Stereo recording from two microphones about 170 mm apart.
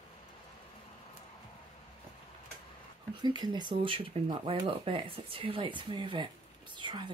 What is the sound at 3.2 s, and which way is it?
Speech, 25° right (ahead or behind).